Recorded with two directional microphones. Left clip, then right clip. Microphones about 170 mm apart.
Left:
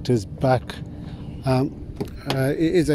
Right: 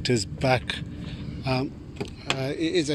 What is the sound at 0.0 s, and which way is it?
Speech, 30° left (ahead or behind).